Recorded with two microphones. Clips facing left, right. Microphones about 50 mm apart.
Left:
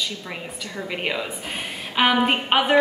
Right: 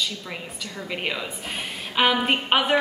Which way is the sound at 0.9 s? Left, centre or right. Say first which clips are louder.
Left 2 dB; centre.